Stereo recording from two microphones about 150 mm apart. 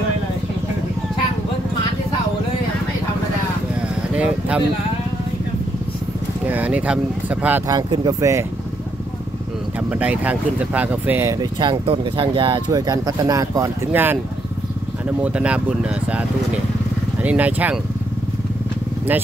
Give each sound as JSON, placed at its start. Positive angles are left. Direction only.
{"t": 4.1, "sound": "a sound", "side_deg": -10}
{"t": 6.4, "sound": "speech", "side_deg": -10}
{"t": 7.6, "sound": "speech", "side_deg": -25}
{"t": 9.9, "sound": "speech", "side_deg": -10}
{"t": 11.3, "sound": "speech", "side_deg": -30}
{"t": 15.2, "sound": "speech", "side_deg": -10}